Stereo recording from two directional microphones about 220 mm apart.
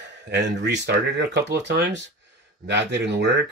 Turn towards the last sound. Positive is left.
turn(degrees=-50)  # may be behind; listen again after turning